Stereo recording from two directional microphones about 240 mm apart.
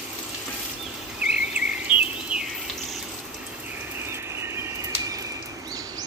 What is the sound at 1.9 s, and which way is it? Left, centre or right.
Bird vocalization, left.